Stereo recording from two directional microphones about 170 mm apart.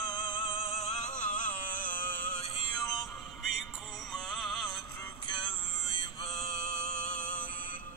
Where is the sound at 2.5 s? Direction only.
25° left (ahead or behind).